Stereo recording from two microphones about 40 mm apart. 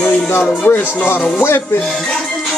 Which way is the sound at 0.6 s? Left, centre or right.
Left.